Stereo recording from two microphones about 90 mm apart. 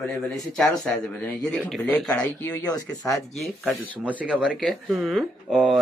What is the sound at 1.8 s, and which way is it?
Speech, 10° left (ahead or behind).